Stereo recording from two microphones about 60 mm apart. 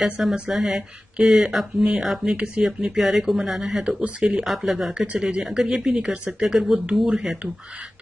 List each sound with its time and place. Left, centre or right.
0.0 s speech: centre
3.0 s speech: centre
5.0 s speech: centre
5.9 s speech: centre